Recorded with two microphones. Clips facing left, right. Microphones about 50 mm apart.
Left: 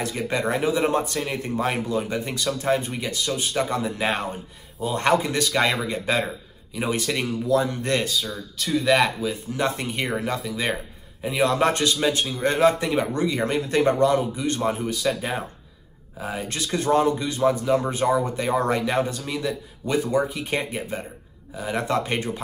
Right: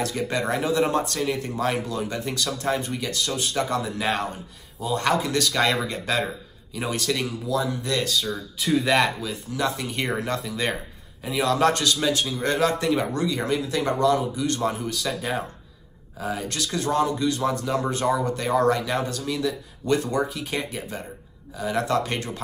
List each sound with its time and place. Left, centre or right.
0.0 s a man's voice: centre
5.3 s speech: centre
6.2 s a sound: centre
6.9 s speech: centre
7.4 s speech: left
8.3 s speech: centre
9.5 s a man's voice: left
9.9 s speech: centre
11.2 s a man's voice: centre
20.4 s a man's voice: left